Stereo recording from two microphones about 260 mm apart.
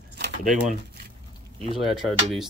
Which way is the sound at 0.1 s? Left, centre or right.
Right.